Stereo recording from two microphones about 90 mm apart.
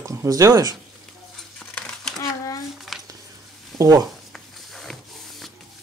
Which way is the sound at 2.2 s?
40° left (ahead or behind).